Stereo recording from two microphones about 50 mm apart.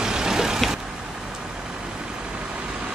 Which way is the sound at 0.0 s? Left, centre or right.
Centre.